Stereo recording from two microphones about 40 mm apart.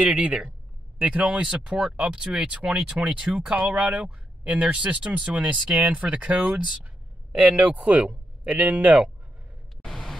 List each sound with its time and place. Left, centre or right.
0.0 s speech: right
1.4 s speech: right
2.7 s speech: right
9.8 s vehicle: centre